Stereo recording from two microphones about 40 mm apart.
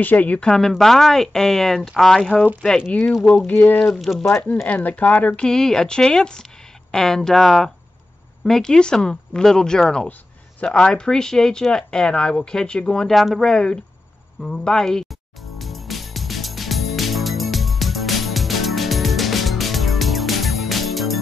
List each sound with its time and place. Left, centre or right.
0.0 s speech: left
0.5 s speech: centre
3.4 s speech: left
3.9 s speech: centre
4.6 s speech: left
5.4 s speech: centre
10.6 s speech: left
13.1 s speech: centre
15.4 s music: centre